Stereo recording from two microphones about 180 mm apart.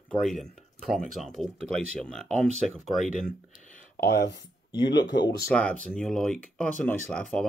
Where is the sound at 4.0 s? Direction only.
70° left (ahead or behind).